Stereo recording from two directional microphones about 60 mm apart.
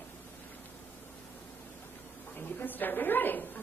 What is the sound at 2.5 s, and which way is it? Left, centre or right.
Speech, left.